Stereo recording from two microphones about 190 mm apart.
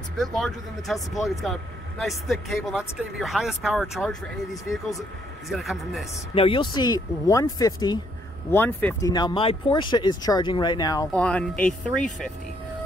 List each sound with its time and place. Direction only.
0.2 s speech: centre (ahead or behind)
5.5 s speech: centre (ahead or behind)
6.3 s speech: 30° left (ahead or behind); by 9.1 s 10° left (ahead or behind)
9.1 s speech: 25° left (ahead or behind)
11.1 s speech: 5° left (ahead or behind)